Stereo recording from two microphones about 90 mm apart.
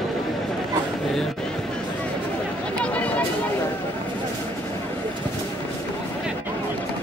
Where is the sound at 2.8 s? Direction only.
15° left (ahead or behind).